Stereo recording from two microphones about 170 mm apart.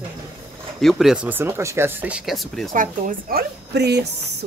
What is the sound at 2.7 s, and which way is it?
Speech, 50° right (ahead or behind).